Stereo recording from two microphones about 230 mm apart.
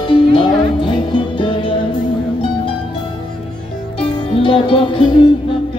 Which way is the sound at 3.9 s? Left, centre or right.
Left.